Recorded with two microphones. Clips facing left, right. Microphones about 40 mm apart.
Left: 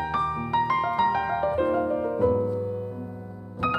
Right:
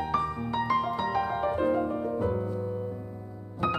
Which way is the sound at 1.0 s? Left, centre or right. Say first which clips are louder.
Left 5 dB; left.